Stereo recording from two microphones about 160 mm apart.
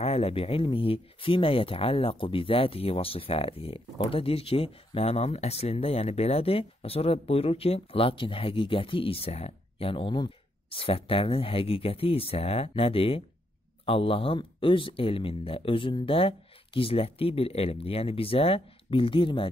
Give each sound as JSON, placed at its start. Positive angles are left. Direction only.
{"t": 0.0, "sound": "speech", "side_deg": 40}